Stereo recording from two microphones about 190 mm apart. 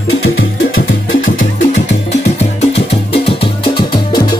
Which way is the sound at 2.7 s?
30° left (ahead or behind).